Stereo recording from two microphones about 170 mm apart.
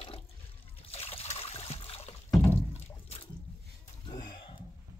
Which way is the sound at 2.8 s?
35° left (ahead or behind).